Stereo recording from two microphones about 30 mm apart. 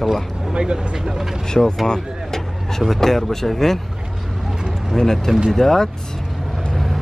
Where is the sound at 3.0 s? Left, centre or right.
Centre.